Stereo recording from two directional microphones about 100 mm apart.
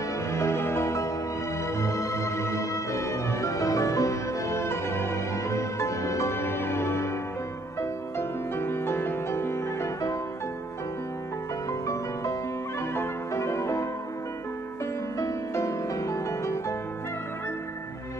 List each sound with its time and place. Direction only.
0.3 s music: 25° left (ahead or behind)
12.9 s music: 25° left (ahead or behind)
15.1 s music: 30° left (ahead or behind)